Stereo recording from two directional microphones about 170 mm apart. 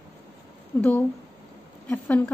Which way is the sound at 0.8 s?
10° left (ahead or behind).